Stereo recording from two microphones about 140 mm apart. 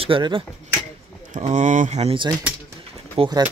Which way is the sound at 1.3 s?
60° right (ahead or behind).